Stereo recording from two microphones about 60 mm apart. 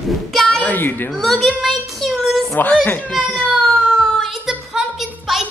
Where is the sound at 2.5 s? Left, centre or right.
Left.